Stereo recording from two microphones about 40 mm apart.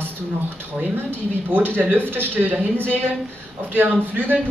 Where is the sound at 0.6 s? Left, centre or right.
Right.